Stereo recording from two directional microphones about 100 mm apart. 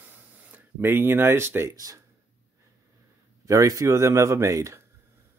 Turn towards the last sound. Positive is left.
turn(degrees=-30)  # may be behind; listen again after turning